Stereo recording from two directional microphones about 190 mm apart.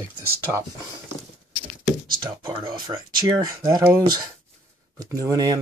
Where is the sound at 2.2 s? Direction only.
20° right (ahead or behind).